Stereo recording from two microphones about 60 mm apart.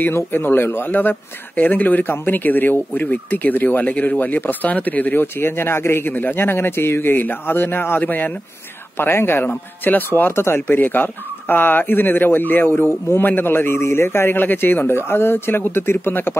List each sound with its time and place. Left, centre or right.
0.0 s speech: left